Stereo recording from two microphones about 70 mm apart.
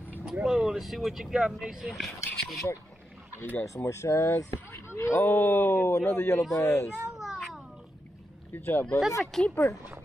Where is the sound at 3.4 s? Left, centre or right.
Left.